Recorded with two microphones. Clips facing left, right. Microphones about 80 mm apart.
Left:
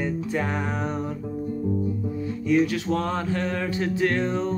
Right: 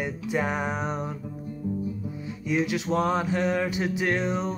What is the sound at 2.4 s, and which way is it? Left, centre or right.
Music, centre.